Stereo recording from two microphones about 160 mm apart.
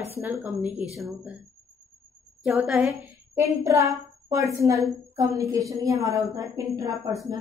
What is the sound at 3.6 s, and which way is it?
A woman's voice, 20° right (ahead or behind).